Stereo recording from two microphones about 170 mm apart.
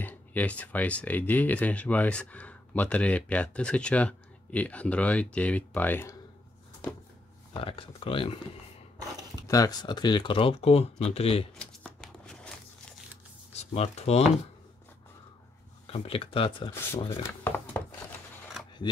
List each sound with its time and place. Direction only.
0.0 s speech: 10° left (ahead or behind)
7.5 s speech: 35° left (ahead or behind)
9.5 s speech: 20° left (ahead or behind)
11.5 s a sound: 5° left (ahead or behind)
13.5 s speech: 40° left (ahead or behind)
15.9 s speech: 35° left (ahead or behind)
17.4 s a sound: 10° left (ahead or behind)